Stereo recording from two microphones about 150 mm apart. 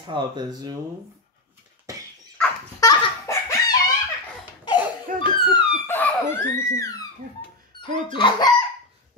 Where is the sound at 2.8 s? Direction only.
20° left (ahead or behind).